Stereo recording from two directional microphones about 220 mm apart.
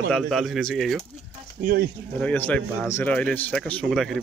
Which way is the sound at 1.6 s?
45° right (ahead or behind).